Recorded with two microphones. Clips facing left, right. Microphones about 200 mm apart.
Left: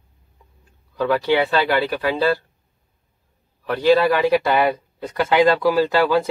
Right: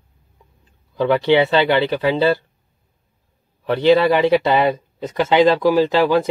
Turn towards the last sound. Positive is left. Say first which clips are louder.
# right 2 dB
turn(degrees=-20)  # may be behind; listen again after turning